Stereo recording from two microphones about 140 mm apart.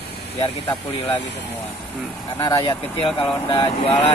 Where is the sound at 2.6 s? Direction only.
40° left (ahead or behind).